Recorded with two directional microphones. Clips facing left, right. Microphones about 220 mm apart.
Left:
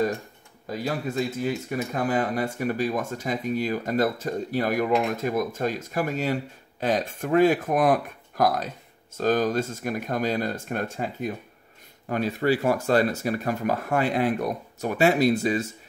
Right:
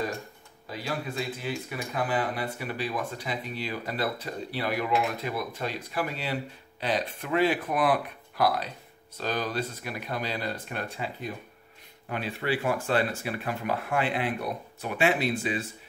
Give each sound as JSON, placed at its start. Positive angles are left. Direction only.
{"t": 0.7, "sound": "speech", "side_deg": 45}